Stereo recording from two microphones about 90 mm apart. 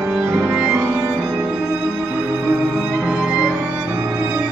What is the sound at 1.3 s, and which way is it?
Music, 15° right (ahead or behind).